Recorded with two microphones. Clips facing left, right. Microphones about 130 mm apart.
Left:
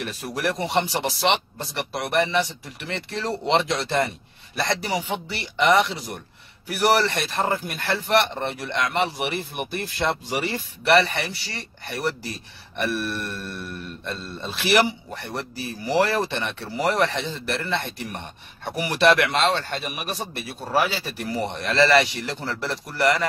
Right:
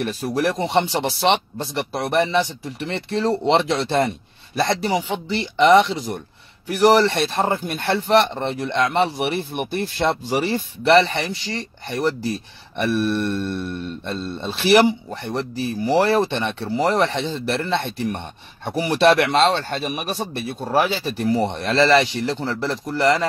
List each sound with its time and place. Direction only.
0.0 s speech: 30° right (ahead or behind)
5.1 s speech: 25° right (ahead or behind)